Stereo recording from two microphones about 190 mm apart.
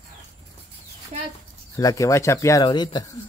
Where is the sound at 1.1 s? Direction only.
35° right (ahead or behind).